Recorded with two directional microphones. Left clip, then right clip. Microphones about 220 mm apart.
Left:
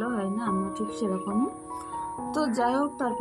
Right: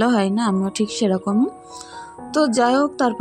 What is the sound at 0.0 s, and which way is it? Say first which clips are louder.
Speech: right 11 dB; 50° right (ahead or behind).